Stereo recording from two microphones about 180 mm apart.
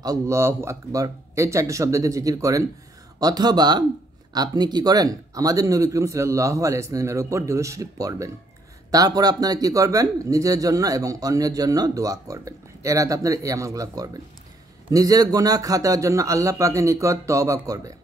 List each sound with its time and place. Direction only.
0.0 s speech: 20° right (ahead or behind)